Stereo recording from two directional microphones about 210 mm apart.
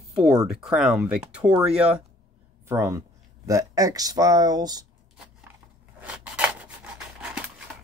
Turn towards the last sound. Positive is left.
turn(degrees=-5)  # may be behind; listen again after turning